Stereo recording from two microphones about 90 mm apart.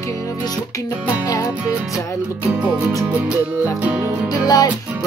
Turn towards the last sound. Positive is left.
turn(degrees=50)  # may be behind; listen again after turning